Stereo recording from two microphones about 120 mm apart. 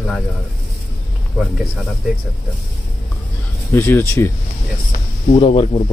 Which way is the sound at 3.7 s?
20° left (ahead or behind).